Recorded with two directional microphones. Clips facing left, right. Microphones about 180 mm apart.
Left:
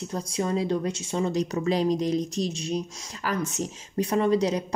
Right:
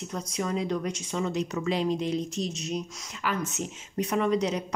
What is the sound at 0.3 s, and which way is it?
Speech, 30° left (ahead or behind).